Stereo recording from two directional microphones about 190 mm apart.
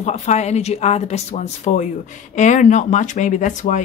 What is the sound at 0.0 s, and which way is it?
Speech, 35° left (ahead or behind).